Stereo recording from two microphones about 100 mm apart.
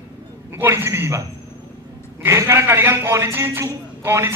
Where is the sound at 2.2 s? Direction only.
30° right (ahead or behind).